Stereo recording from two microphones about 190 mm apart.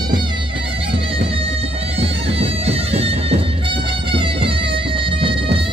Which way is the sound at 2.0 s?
30° right (ahead or behind).